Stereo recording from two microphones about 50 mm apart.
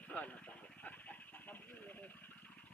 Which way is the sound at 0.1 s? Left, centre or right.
Left.